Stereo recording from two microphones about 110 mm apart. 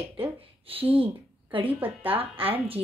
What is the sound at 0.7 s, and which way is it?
Speech, 55° right (ahead or behind).